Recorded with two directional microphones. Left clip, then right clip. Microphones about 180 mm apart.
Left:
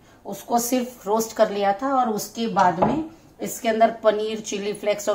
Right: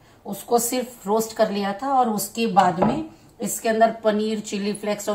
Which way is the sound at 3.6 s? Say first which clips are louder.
Even; 35° left (ahead or behind).